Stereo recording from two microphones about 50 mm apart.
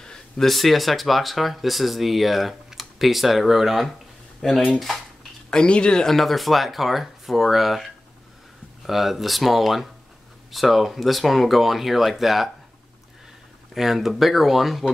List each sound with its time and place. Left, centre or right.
0.0 s a sound: centre
0.5 s speech: centre
5.5 s speech: centre
6.0 s speech: centre
13.7 s speech: centre